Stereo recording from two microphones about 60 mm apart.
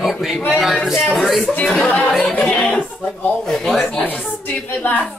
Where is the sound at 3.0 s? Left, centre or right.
Left.